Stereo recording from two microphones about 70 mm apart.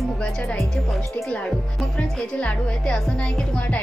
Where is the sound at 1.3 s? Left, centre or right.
Centre.